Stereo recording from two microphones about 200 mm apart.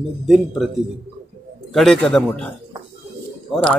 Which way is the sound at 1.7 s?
Centre (ahead or behind).